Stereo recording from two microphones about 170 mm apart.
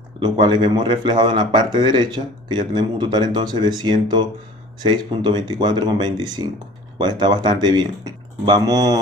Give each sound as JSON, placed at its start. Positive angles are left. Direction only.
{"t": 0.2, "sound": "speech", "side_deg": -25}